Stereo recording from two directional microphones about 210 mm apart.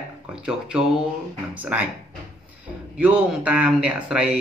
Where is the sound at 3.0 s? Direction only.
5° right (ahead or behind).